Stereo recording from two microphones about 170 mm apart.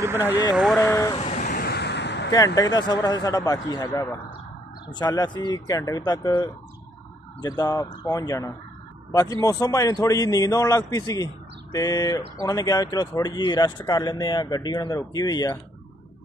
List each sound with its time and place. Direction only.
0.0 s speech: 15° right (ahead or behind)
0.6 s speech: centre (ahead or behind)
0.8 s speech: 15° left (ahead or behind)
1.1 s vehicle: 40° left (ahead or behind)
1.6 s vehicle: 75° left (ahead or behind); by 2.3 s 90° left
2.3 s speech: 20° left (ahead or behind)